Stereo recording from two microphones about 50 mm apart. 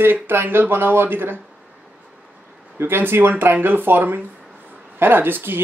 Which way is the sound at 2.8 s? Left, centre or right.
Right.